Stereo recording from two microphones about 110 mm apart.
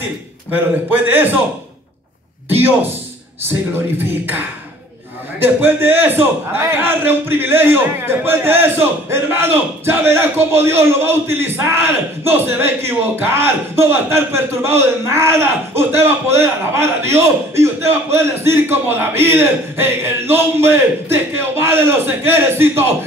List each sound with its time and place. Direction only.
0.5 s a man's voice: 15° right (ahead or behind)
4.0 s a man's voice: 20° right (ahead or behind)